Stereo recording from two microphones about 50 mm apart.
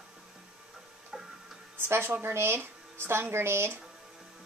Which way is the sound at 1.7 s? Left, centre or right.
Right.